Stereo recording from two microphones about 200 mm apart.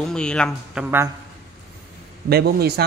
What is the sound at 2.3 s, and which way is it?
Speech, 55° right (ahead or behind).